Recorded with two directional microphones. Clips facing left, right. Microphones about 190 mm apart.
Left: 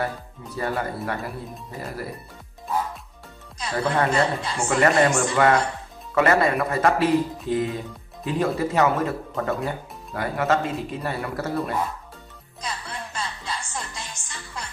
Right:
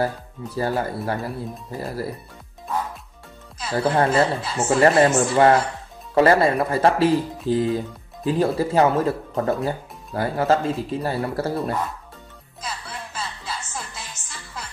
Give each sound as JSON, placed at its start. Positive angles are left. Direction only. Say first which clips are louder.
{"t": 0.6, "sound": "speech", "louder": "right 3 dB", "side_deg": -30}
{"t": 3.8, "sound": "speech", "louder": "right 3 dB", "side_deg": -30}
{"t": 4.1, "sound": "speech", "louder": "right 3 dB", "side_deg": -5}
{"t": 4.6, "sound": "speech", "louder": "right 3 dB", "side_deg": -30}
{"t": 12.6, "sound": "music", "louder": "even", "side_deg": -5}